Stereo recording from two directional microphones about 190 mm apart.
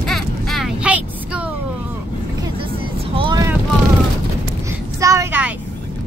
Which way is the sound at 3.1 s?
25° right (ahead or behind).